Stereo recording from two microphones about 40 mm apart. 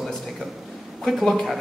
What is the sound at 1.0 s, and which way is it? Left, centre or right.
Speech, centre.